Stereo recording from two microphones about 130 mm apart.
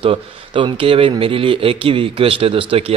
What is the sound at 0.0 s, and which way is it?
Speech, 40° right (ahead or behind).